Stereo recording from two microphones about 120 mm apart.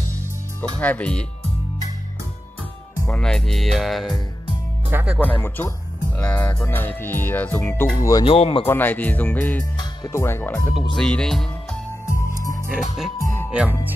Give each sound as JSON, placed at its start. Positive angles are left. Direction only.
{"t": 0.6, "sound": "music", "side_deg": 10}
{"t": 3.1, "sound": "music", "side_deg": 5}
{"t": 4.8, "sound": "speech", "side_deg": -15}
{"t": 5.2, "sound": "music", "side_deg": 15}
{"t": 8.0, "sound": "speech", "side_deg": 30}
{"t": 8.3, "sound": "speech", "side_deg": 50}
{"t": 8.6, "sound": "music", "side_deg": 15}
{"t": 9.8, "sound": "speech", "side_deg": 25}
{"t": 11.0, "sound": "speech", "side_deg": 5}
{"t": 12.7, "sound": "music", "side_deg": -5}
{"t": 13.2, "sound": "music", "side_deg": 20}
{"t": 13.5, "sound": "speech", "side_deg": -10}